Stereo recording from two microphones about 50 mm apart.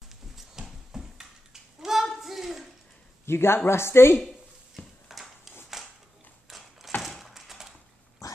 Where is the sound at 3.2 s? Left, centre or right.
Left.